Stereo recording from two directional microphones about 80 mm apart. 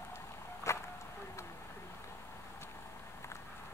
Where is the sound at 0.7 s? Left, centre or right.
Left.